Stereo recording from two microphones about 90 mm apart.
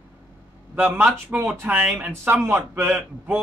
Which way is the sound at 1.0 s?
15° right (ahead or behind).